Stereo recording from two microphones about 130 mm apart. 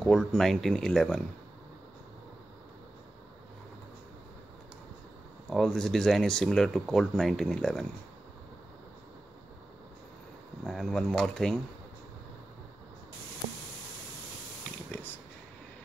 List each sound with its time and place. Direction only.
0.0 s speech: 5° left (ahead or behind)
5.5 s speech: 5° left (ahead or behind)
10.6 s speech: 5° left (ahead or behind)
14.9 s a sound: 15° left (ahead or behind)